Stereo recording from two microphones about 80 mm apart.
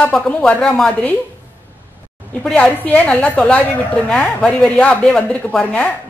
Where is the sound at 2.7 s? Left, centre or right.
Centre.